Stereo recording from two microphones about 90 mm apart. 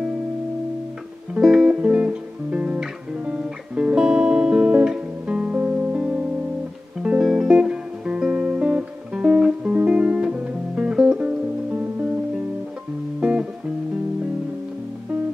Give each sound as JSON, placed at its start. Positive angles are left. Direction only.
{"t": 1.3, "sound": "music", "side_deg": -5}
{"t": 1.8, "sound": "guitar", "side_deg": -15}
{"t": 13.2, "sound": "music", "side_deg": -15}